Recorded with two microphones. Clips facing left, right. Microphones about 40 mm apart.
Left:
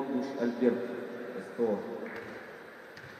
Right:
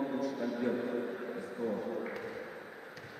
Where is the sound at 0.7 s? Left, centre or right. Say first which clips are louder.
Left 1 dB; centre.